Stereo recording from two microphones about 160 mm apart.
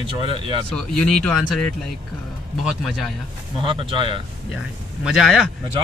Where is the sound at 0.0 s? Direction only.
30° right (ahead or behind).